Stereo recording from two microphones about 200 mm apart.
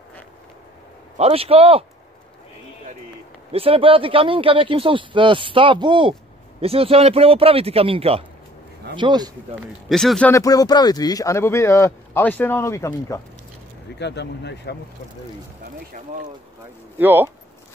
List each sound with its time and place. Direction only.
1.1 s speech: 30° right (ahead or behind)
3.5 s speech: 30° right (ahead or behind)
9.8 s speech: centre (ahead or behind)
10.3 s speech: 15° left (ahead or behind)
13.9 s speech: 60° left (ahead or behind)
17.0 s speech: 10° right (ahead or behind)